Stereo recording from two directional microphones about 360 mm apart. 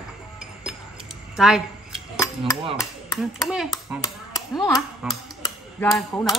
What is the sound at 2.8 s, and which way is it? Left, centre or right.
Speech, centre.